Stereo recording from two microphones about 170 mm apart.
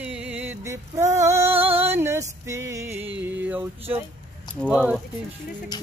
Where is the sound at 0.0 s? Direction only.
5° right (ahead or behind).